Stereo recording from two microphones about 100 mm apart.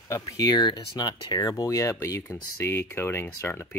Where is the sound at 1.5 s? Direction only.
35° left (ahead or behind).